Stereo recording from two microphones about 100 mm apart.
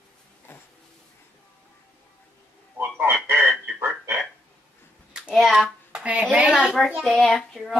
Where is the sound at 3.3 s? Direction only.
20° right (ahead or behind).